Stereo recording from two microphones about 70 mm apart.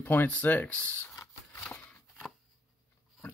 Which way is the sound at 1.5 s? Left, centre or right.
Left.